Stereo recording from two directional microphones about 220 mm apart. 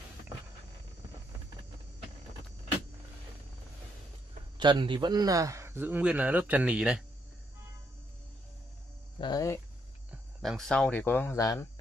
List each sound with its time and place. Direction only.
4.6 s speech: 20° right (ahead or behind); by 7.0 s 5° right (ahead or behind)
9.2 s cricket: 15° left (ahead or behind)
10.4 s speech: centre (ahead or behind)